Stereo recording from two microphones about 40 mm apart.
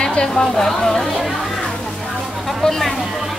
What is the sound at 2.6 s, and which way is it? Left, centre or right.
Speech, centre.